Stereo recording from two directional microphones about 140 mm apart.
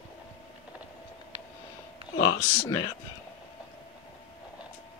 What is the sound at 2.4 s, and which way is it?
Speech, 20° left (ahead or behind).